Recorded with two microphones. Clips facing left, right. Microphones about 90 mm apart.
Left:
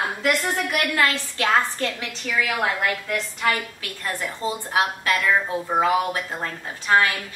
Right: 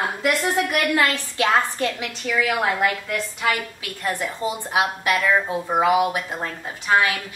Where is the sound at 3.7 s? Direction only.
20° right (ahead or behind).